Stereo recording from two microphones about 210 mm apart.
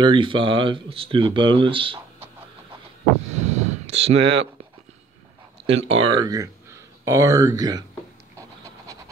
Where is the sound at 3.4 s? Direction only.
30° right (ahead or behind).